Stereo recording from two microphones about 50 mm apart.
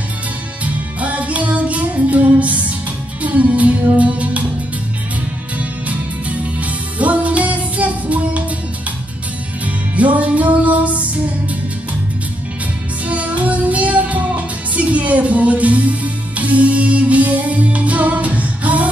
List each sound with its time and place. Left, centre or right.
0.7 s music: right
5.6 s music: right
9.7 s music: right
13.0 s music: right